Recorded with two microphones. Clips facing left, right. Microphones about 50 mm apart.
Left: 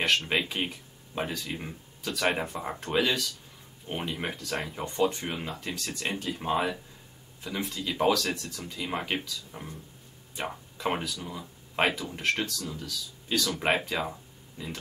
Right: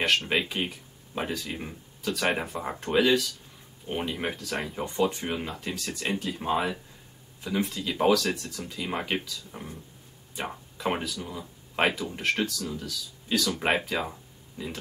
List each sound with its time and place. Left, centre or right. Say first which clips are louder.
0.0 s speech: right 1 dB; centre